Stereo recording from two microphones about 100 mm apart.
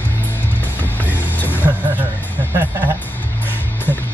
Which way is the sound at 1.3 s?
20° left (ahead or behind).